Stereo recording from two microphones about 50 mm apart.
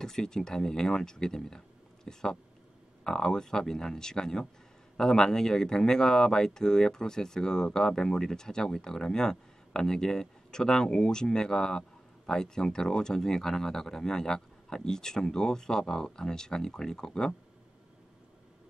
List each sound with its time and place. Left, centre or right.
0.0 s speech: centre
2.1 s a sound: centre
3.0 s speech: centre